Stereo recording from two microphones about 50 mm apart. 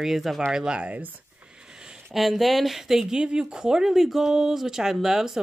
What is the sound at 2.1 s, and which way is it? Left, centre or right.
Speech, centre.